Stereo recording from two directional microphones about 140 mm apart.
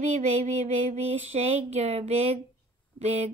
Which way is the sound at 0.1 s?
55° right (ahead or behind).